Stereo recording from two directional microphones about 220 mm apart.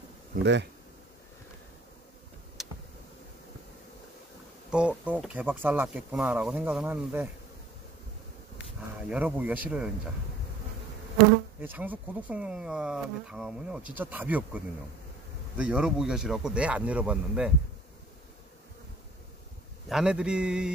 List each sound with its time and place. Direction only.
0.4 s speech: 50° right (ahead or behind)
2.6 s tick: centre (ahead or behind)
4.6 s speech: 5° right (ahead or behind)
9.1 s speech: 5° right (ahead or behind)
11.6 s speech: 10° right (ahead or behind)
19.9 s speech: 5° right (ahead or behind)